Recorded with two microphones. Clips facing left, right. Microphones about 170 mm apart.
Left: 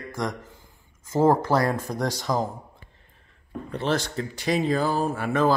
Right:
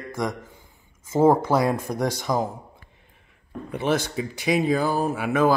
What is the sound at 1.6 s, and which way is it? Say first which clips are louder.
Speech: right 2 dB; 20° right (ahead or behind).